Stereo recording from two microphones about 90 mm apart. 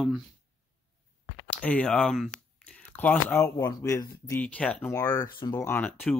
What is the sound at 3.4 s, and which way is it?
Speech, 35° left (ahead or behind).